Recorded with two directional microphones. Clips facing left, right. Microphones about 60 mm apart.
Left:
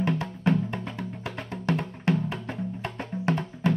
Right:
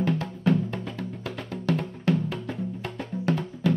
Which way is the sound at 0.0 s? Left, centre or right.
Left.